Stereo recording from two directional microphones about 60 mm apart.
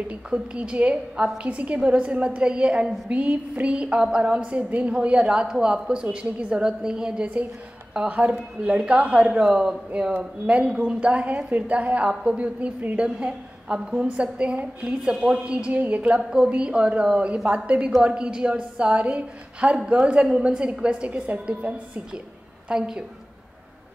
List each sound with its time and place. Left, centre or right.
0.1 s a woman's voice: centre